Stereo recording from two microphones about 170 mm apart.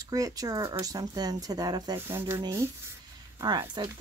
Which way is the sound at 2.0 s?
15° right (ahead or behind).